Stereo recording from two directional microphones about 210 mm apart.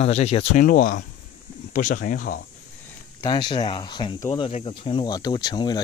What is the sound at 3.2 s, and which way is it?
Speech, 20° left (ahead or behind).